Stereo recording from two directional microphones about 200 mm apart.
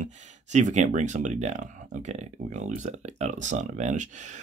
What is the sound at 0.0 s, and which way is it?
Speech, 35° right (ahead or behind).